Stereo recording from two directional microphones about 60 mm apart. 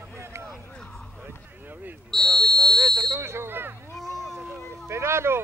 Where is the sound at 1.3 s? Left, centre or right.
Right.